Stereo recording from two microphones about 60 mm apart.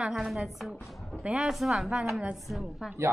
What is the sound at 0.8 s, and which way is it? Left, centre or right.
Music, centre.